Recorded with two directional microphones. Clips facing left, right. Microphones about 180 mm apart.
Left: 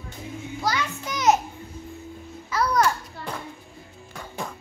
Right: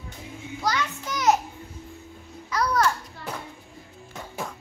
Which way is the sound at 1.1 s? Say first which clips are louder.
Left 1 dB; 20° left (ahead or behind).